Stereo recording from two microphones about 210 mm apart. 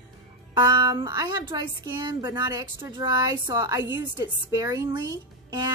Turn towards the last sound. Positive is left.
turn(degrees=-15)  # may be behind; listen again after turning